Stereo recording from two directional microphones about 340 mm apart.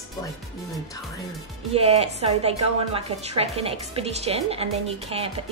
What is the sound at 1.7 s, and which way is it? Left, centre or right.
A woman's voice, centre.